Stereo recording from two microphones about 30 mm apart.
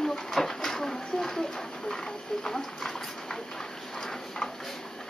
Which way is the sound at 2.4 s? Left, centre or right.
Centre.